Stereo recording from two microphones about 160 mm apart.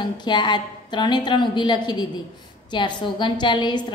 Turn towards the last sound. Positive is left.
turn(degrees=30)  # may be behind; listen again after turning